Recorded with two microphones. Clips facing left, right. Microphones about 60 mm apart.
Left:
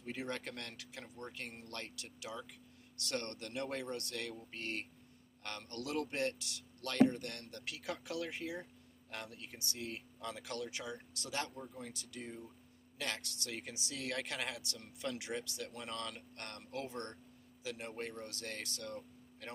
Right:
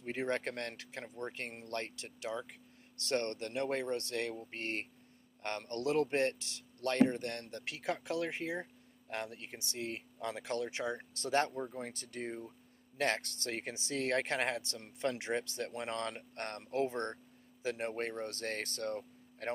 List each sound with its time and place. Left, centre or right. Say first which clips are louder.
0.0 s speech: right 6 dB; right